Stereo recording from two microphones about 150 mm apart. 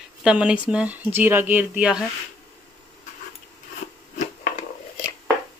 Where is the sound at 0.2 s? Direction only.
5° right (ahead or behind).